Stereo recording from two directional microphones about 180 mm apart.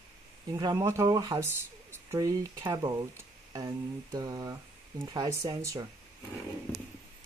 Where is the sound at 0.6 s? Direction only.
15° right (ahead or behind).